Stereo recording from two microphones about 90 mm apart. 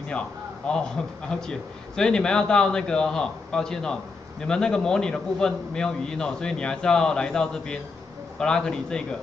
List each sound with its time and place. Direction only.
0.7 s a man's voice: 10° left (ahead or behind)